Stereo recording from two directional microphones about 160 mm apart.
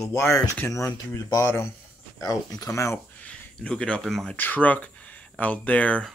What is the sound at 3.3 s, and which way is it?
Speech, 5° left (ahead or behind).